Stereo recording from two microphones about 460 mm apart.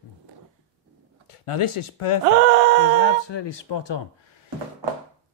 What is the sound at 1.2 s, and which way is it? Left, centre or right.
Speech, left.